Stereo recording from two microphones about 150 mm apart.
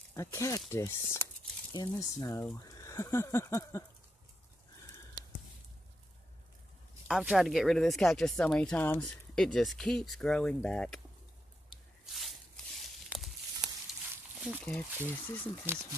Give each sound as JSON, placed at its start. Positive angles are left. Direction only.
{"t": 0.1, "sound": "speech", "side_deg": 20}
{"t": 7.1, "sound": "speech", "side_deg": -5}
{"t": 11.7, "sound": "a sound", "side_deg": 35}
{"t": 12.1, "sound": "a sound", "side_deg": 0}
{"t": 14.8, "sound": "speech", "side_deg": 15}
{"t": 15.7, "sound": "speech", "side_deg": -15}